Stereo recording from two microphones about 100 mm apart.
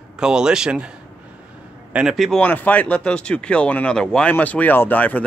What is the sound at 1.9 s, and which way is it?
Speech, 10° right (ahead or behind).